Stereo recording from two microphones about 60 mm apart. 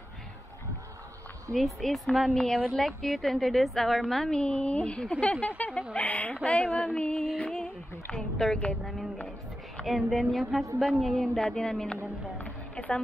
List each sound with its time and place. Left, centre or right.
1.5 s a woman's voice: centre
4.4 s a woman's voice: centre